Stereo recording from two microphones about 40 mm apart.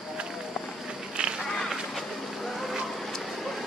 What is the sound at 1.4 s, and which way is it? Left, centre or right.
Duck, centre.